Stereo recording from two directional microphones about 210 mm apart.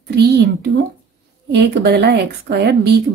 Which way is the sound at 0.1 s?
50° right (ahead or behind).